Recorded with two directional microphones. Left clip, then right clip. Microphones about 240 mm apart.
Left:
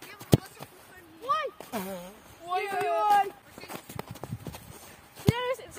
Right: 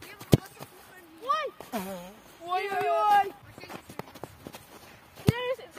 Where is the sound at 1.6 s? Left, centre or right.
Centre.